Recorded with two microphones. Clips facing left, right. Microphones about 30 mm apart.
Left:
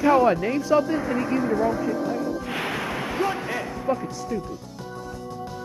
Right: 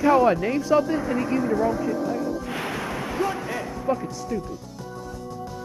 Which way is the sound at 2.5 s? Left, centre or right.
Left.